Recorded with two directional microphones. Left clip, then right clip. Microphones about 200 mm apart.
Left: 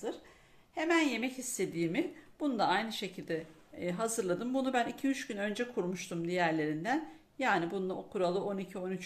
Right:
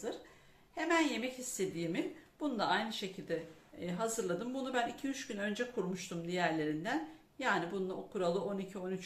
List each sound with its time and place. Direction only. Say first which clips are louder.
0.7 s speech: left 2 dB; 45° left (ahead or behind)